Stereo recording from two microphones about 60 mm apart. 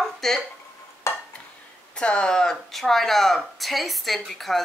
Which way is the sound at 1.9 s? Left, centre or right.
Centre.